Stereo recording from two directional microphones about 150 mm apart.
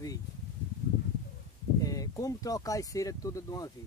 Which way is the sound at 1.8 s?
25° left (ahead or behind).